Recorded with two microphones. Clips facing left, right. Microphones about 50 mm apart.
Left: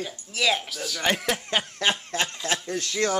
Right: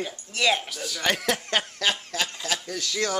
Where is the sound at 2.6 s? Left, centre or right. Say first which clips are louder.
Left 2 dB; left.